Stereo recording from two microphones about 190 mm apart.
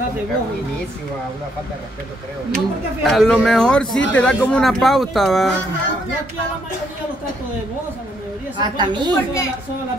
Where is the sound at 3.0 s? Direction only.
Centre (ahead or behind).